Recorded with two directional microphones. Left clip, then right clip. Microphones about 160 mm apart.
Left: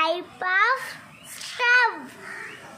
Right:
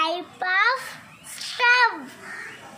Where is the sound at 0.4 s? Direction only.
20° left (ahead or behind).